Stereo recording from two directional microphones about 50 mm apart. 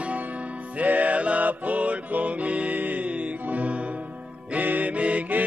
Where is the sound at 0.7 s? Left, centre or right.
Right.